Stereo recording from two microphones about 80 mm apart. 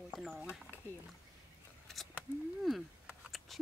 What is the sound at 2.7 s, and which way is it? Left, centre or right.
Speech, centre.